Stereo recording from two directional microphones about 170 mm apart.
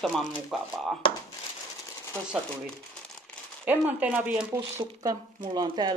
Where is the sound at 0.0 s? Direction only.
Centre (ahead or behind).